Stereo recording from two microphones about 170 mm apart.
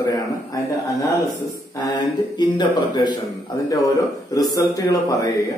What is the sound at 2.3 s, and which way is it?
Speech, 25° left (ahead or behind).